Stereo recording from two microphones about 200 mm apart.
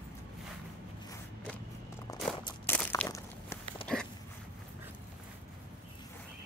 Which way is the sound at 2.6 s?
10° left (ahead or behind).